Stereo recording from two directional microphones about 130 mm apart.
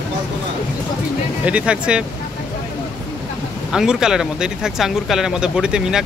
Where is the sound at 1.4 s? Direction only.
10° right (ahead or behind).